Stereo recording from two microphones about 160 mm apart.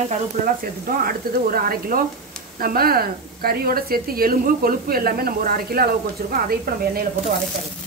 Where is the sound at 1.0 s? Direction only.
65° right (ahead or behind).